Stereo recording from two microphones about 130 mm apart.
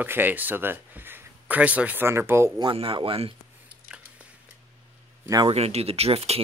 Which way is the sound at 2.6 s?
40° right (ahead or behind).